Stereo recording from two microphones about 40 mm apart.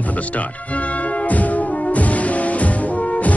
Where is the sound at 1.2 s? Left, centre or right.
Left.